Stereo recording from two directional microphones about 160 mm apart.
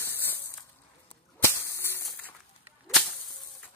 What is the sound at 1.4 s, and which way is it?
Whip, 15° left (ahead or behind).